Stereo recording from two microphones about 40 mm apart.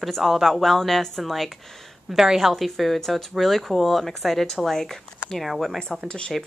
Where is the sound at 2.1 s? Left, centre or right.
Centre.